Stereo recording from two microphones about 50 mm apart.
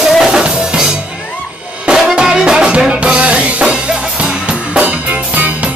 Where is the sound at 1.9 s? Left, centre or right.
Centre.